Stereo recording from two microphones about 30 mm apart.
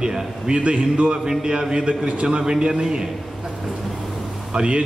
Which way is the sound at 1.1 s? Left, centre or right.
Right.